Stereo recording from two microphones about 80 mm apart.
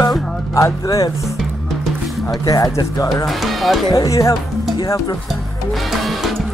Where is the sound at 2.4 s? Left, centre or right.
Left.